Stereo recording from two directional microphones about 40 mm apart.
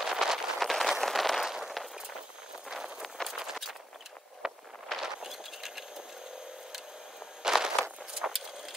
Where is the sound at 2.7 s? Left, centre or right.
Centre.